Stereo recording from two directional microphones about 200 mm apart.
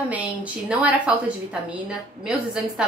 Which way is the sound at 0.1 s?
5° right (ahead or behind).